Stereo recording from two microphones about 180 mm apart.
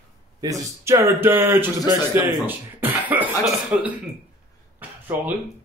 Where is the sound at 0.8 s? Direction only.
15° right (ahead or behind).